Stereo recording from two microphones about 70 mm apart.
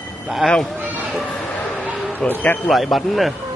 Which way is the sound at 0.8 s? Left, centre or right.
Right.